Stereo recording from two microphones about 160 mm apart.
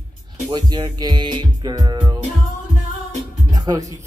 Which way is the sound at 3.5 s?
25° right (ahead or behind).